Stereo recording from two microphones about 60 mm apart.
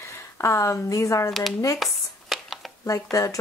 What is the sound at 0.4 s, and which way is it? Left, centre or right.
Speech, left.